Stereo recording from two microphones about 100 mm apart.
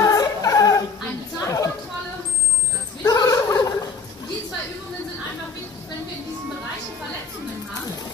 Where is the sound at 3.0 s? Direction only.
40° left (ahead or behind).